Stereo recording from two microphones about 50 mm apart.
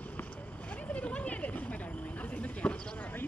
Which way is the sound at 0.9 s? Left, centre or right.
Left.